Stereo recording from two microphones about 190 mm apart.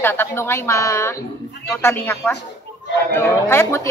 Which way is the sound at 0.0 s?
10° left (ahead or behind).